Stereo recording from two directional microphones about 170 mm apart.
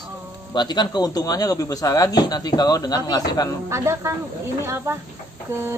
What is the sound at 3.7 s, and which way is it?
Speech, 15° right (ahead or behind).